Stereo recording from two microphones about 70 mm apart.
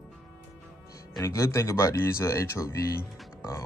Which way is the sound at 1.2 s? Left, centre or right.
Left.